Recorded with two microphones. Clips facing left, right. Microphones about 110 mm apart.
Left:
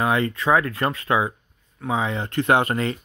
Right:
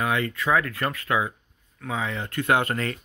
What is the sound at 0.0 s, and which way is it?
Speech, 30° left (ahead or behind).